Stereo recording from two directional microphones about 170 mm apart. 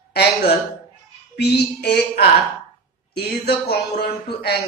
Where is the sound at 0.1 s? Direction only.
70° left (ahead or behind).